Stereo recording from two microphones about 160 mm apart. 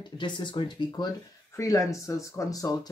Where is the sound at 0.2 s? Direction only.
30° left (ahead or behind).